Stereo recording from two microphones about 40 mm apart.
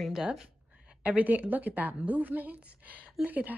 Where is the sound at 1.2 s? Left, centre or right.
Right.